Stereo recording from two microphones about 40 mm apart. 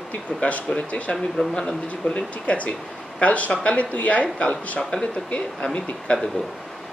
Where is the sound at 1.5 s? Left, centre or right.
Centre.